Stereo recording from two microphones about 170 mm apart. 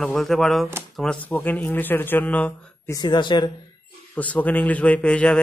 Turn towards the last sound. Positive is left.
turn(degrees=5)  # may be behind; listen again after turning